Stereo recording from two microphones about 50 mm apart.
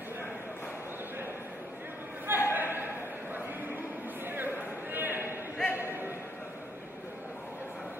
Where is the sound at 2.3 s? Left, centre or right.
Right.